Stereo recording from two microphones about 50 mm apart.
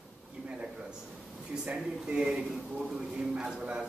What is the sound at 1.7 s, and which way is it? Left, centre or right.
A man's voice, centre.